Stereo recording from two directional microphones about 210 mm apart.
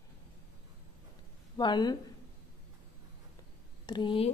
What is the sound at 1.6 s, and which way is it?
Speech, 20° left (ahead or behind).